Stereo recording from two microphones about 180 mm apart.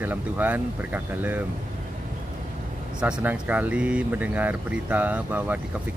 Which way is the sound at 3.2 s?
10° right (ahead or behind).